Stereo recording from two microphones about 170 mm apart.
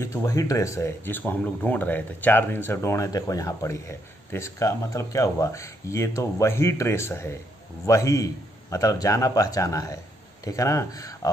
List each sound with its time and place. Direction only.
0.0 s a man's voice: 20° left (ahead or behind)